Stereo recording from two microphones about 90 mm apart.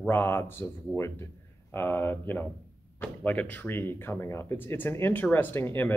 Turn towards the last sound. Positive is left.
turn(degrees=25)  # may be behind; listen again after turning